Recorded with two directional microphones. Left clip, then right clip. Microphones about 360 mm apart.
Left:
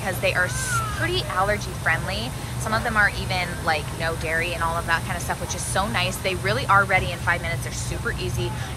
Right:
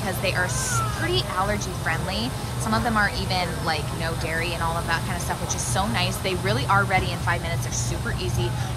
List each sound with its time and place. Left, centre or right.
0.0 s speech: centre